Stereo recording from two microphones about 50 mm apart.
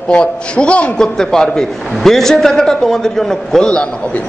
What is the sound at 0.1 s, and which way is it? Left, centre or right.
A man's voice, left.